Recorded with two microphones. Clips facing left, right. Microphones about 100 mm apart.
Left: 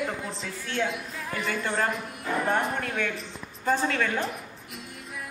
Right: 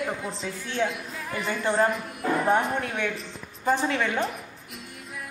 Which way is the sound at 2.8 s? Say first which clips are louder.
Right 1 dB; 15° right (ahead or behind).